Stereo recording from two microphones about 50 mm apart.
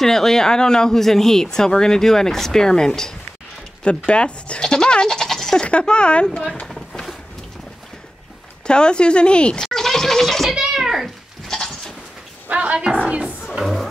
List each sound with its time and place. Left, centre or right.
0.0 s speech: centre
4.0 s speech: left
5.7 s speech: left
6.7 s a sound: centre
8.6 s speech: centre
9.7 s scratch: centre
10.5 s bathtub: centre
11.4 s goat: centre
12.4 s speech: right
13.0 s speech: centre